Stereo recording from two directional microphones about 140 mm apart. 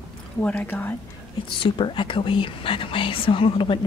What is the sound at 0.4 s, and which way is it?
Speech, 15° left (ahead or behind).